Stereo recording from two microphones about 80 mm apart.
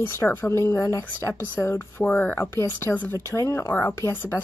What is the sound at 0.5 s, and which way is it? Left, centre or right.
A woman's voice, left.